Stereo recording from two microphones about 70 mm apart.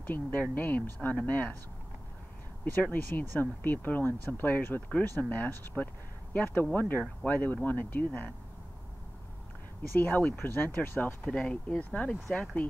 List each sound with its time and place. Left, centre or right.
0.0 s speech: left
2.6 s speech: left
9.9 s speech: left
11.2 s speech: centre